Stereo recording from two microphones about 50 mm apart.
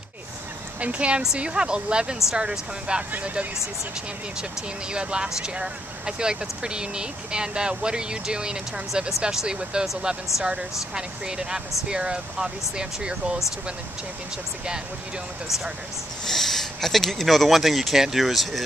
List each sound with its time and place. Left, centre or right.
0.7 s speech: right
3.1 s speech: right
4.9 s speech: centre
16.3 s speech: centre